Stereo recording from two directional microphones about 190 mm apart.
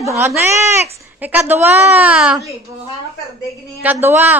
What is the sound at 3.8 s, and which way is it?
Speech, 10° right (ahead or behind).